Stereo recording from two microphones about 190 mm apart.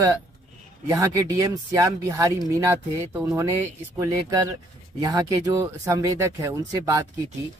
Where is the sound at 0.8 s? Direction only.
15° right (ahead or behind).